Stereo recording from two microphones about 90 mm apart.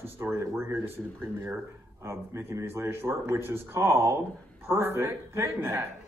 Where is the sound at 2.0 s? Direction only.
30° right (ahead or behind).